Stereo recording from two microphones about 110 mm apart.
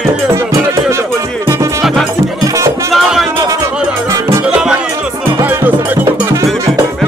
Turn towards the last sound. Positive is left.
turn(degrees=-15)  # may be behind; listen again after turning